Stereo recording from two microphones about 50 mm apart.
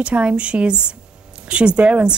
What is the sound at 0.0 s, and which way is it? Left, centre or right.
Speech, right.